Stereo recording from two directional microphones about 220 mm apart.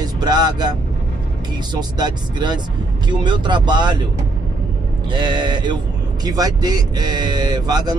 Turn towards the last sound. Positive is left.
turn(degrees=-20)  # may be behind; listen again after turning